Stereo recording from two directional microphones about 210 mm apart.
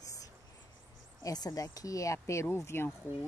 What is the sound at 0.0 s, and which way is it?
Cricket, 15° left (ahead or behind).